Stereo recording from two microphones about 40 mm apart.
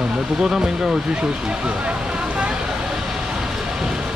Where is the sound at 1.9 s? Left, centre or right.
Right.